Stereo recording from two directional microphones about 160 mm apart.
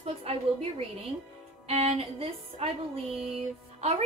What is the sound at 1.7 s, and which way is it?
A woman's voice, 40° right (ahead or behind).